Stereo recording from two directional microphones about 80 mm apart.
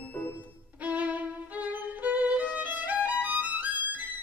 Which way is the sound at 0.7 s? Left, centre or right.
Right.